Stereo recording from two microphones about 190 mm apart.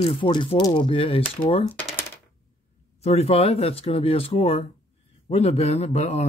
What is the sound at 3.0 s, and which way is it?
Speech, 35° left (ahead or behind).